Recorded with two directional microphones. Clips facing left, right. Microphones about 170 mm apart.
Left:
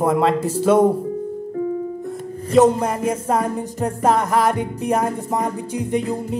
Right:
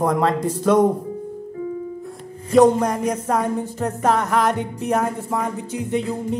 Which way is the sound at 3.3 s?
10° left (ahead or behind).